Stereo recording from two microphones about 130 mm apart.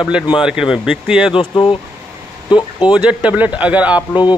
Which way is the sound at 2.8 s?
5° right (ahead or behind).